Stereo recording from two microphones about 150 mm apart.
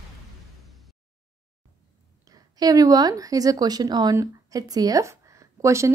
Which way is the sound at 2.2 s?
25° right (ahead or behind).